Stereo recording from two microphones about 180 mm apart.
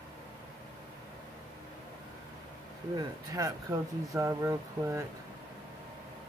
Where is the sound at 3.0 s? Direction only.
20° right (ahead or behind).